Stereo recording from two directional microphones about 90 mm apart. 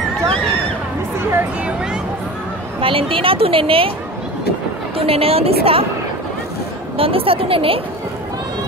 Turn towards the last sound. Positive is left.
turn(degrees=-90)